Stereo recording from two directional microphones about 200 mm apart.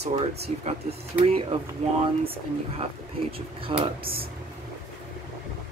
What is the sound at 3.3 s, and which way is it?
Speech, 25° right (ahead or behind).